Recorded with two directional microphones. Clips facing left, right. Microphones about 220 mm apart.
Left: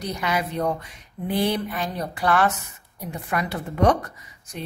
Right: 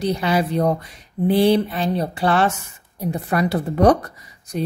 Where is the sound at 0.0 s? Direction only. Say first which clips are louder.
Right 7 dB; 30° right (ahead or behind).